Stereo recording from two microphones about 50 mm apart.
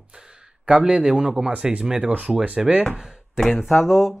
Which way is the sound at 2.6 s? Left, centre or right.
Centre.